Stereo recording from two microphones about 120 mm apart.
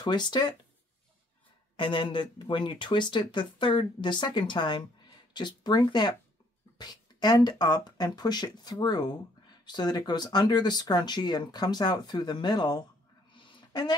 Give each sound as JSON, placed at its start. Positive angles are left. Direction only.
{"t": 0.0, "sound": "speech", "side_deg": 40}
{"t": 1.8, "sound": "speech", "side_deg": 40}
{"t": 13.3, "sound": "a sound", "side_deg": 40}